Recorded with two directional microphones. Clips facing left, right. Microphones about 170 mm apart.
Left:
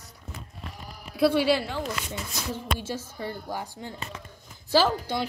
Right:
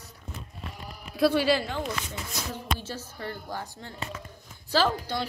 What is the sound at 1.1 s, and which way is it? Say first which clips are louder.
Speech: left 1 dB; 10° left (ahead or behind).